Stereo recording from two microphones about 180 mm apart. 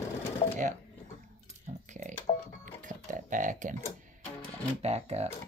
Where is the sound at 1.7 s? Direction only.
45° right (ahead or behind).